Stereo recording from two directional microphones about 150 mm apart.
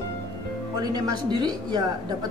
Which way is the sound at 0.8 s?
25° right (ahead or behind).